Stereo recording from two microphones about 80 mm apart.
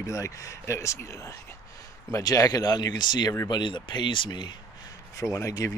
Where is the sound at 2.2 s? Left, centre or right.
Left.